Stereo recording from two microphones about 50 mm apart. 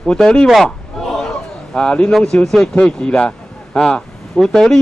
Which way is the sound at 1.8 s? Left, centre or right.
Left.